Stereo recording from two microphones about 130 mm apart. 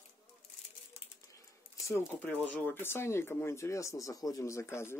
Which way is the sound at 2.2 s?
10° left (ahead or behind).